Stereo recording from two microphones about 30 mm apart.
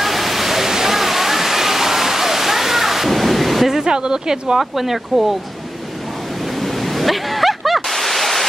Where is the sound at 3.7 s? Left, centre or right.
Right.